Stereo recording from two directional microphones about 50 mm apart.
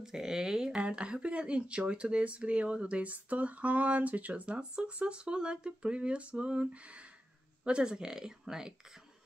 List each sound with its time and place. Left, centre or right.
0.0 s speech: centre